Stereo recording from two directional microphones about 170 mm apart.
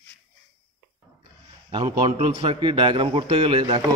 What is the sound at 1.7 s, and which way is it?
A man's voice, 30° right (ahead or behind).